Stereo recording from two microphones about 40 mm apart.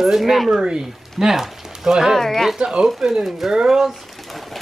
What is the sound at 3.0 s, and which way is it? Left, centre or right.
Speech, centre.